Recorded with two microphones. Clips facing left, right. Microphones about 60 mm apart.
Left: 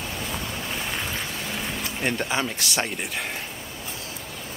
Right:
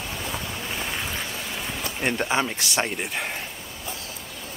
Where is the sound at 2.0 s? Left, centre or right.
Centre.